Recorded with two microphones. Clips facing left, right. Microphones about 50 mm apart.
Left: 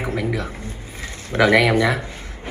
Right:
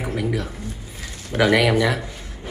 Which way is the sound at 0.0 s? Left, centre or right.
Left.